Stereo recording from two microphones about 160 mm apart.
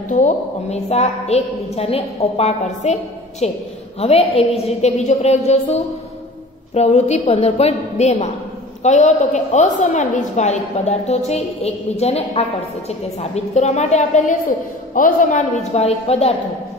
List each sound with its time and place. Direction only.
0.1 s a woman's voice: 45° left (ahead or behind)
15.0 s a woman's voice: 55° left (ahead or behind)
15.7 s a woman's voice: 40° left (ahead or behind)